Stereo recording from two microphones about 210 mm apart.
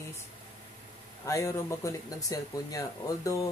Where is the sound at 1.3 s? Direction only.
15° left (ahead or behind).